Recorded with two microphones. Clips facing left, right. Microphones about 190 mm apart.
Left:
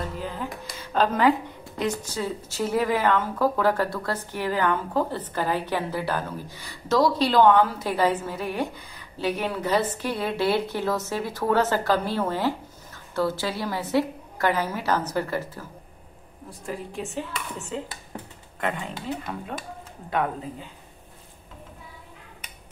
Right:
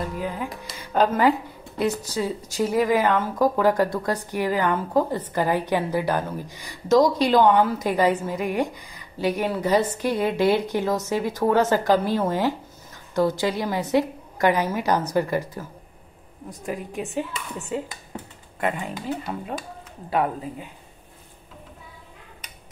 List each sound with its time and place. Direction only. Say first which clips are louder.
0.1 s music: right 3 dB; 10° right (ahead or behind)
0.7 s a woman's voice: right 3 dB; 10° right (ahead or behind)